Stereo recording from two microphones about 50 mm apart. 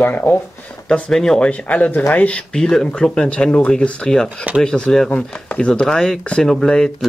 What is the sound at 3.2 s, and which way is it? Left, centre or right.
Speech, left.